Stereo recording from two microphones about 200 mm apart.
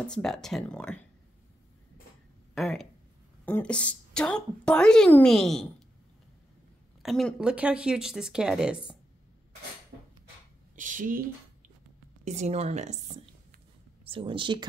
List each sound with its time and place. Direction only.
0.0 s a woman's voice: 5° left (ahead or behind)
2.5 s a sound: centre (ahead or behind)
3.4 s a woman's voice: 5° left (ahead or behind)
7.0 s a woman's voice: centre (ahead or behind)
10.8 s speech: 40° right (ahead or behind)
12.3 s speech: 35° right (ahead or behind)